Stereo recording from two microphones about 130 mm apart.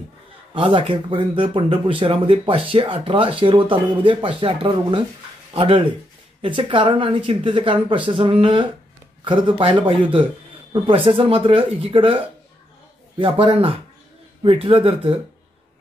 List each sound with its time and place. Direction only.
0.6 s speech: 40° right (ahead or behind)
13.2 s speech: 45° right (ahead or behind)